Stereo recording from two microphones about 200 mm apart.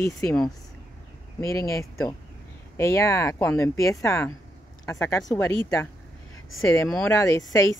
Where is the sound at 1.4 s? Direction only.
15° left (ahead or behind).